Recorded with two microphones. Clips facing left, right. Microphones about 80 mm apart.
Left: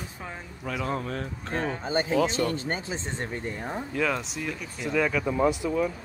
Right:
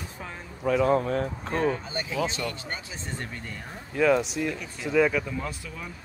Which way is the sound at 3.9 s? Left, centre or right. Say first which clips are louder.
Right 8 dB; centre.